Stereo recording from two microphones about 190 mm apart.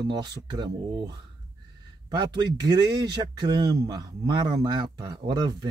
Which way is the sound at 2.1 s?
20° right (ahead or behind).